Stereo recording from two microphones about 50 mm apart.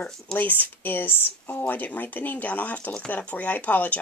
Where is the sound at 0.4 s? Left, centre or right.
Left.